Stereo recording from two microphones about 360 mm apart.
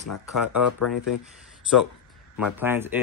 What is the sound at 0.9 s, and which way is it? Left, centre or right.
Speech, left.